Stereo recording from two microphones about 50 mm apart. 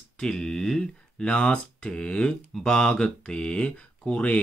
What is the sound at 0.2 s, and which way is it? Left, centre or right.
Speech, centre.